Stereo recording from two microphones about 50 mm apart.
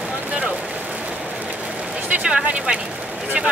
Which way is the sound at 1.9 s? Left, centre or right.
Right.